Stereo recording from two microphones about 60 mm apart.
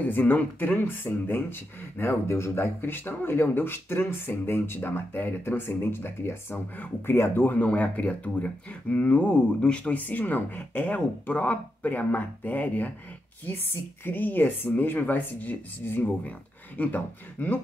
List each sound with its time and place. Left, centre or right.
0.0 s speech: left
7.5 s speech: left
14.0 s speech: left